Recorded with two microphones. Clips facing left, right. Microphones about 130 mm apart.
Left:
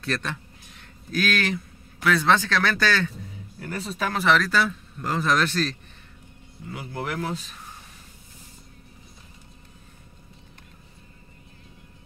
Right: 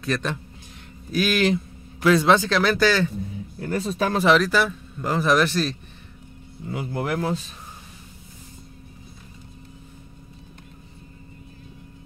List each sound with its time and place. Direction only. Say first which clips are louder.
0.0 s speech: right 4 dB; 15° right (ahead or behind)
2.0 s a man's voice: right 4 dB; 25° right (ahead or behind)
2.7 s speech: right 5 dB; 10° right (ahead or behind)
3.5 s speech: right 6 dB; 30° right (ahead or behind)
4.3 s speech: right 2 dB; 10° right (ahead or behind)
6.7 s a man's voice: right 5 dB; 25° right (ahead or behind)